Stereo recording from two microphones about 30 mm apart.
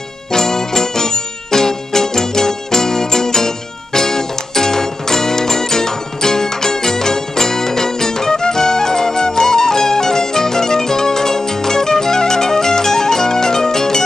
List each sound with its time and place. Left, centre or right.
0.3 s music: centre